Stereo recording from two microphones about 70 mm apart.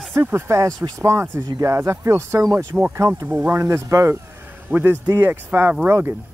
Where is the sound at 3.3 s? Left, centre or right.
Right.